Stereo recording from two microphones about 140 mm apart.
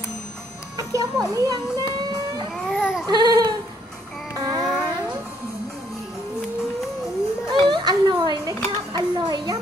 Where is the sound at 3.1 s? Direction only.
30° right (ahead or behind).